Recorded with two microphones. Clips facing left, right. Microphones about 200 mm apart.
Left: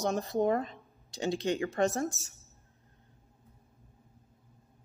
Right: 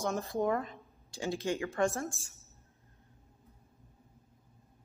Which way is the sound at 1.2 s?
20° left (ahead or behind).